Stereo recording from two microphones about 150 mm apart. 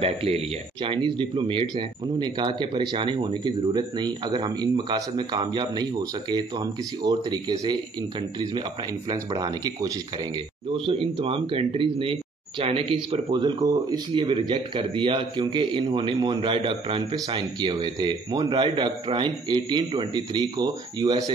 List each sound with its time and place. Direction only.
0.0 s speech: 40° right (ahead or behind)
9.1 s speech: 25° right (ahead or behind)
10.9 s speech: 40° right (ahead or behind)